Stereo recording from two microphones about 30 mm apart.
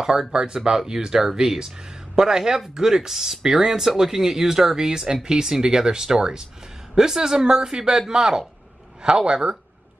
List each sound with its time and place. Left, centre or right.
0.0 s speech: right
9.0 s speech: right